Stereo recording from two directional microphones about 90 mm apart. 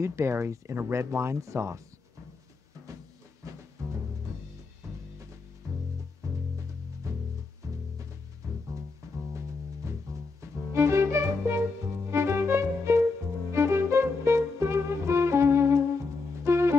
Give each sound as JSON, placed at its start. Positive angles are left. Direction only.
{"t": 0.0, "sound": "speech", "side_deg": -30}
{"t": 3.4, "sound": "music", "side_deg": -40}
{"t": 6.2, "sound": "music", "side_deg": -40}
{"t": 9.0, "sound": "music", "side_deg": -35}